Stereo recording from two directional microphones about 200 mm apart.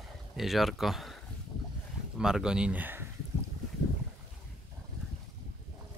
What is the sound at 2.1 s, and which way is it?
Speech, 5° right (ahead or behind).